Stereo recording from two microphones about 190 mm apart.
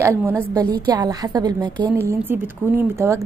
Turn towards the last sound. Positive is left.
turn(degrees=-15)  # may be behind; listen again after turning